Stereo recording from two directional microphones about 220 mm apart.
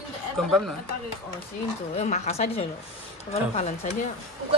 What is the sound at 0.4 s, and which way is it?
Speech, centre (ahead or behind).